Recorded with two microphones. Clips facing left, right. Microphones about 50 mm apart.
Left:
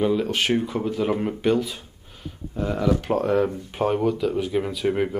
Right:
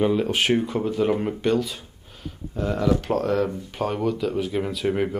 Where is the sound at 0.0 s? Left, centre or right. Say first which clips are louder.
Right 1 dB; centre.